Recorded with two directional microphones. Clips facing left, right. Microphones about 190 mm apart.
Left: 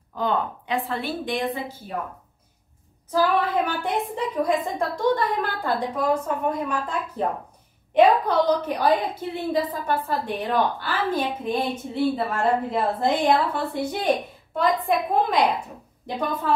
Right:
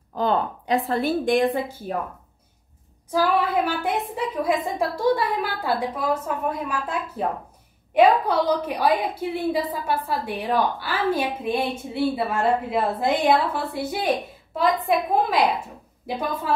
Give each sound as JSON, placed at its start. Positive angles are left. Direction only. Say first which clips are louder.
{"t": 0.1, "sound": "a woman's voice", "louder": "right 2 dB", "side_deg": -35}
{"t": 3.1, "sound": "a woman's voice", "louder": "even", "side_deg": -10}